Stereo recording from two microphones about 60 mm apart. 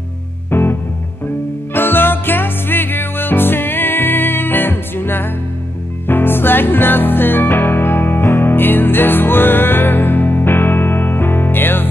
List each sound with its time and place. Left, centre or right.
0.5 s music: left